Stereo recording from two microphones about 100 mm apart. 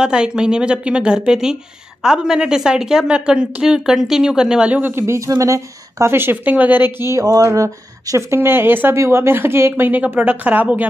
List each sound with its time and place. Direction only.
0.0 s a woman's voice: 10° right (ahead or behind)
7.2 s a woman's voice: 35° right (ahead or behind); by 10.9 s 15° right (ahead or behind)